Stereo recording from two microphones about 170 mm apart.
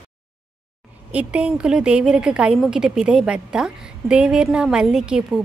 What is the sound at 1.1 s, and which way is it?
A woman's voice, 5° right (ahead or behind).